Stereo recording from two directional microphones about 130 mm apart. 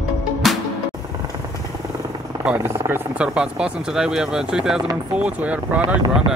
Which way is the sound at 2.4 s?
15° right (ahead or behind).